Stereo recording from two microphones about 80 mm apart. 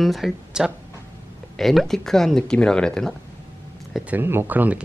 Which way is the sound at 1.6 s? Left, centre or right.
Centre.